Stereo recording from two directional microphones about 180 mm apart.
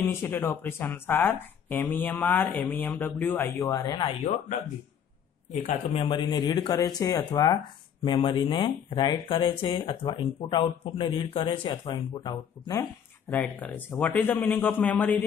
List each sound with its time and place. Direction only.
0.0 s speech: 15° left (ahead or behind)